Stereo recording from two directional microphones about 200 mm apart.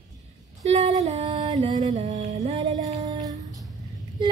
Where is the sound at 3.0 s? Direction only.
20° right (ahead or behind).